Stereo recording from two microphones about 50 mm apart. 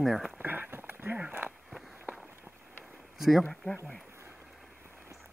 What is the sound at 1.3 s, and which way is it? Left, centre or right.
Speech, right.